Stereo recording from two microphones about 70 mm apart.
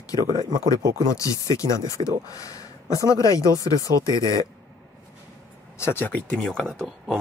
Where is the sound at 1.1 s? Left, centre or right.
Left.